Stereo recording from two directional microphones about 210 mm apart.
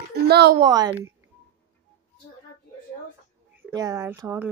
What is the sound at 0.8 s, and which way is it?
Speech, 10° right (ahead or behind).